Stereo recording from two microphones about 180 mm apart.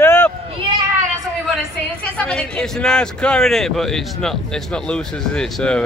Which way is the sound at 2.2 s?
5° left (ahead or behind).